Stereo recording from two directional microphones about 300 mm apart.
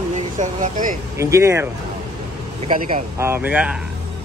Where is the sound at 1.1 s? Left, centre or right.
Centre.